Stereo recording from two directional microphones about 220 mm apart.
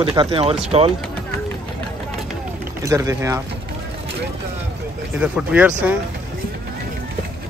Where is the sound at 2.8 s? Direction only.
15° right (ahead or behind).